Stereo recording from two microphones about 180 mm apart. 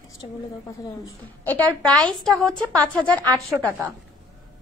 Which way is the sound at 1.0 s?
10° left (ahead or behind).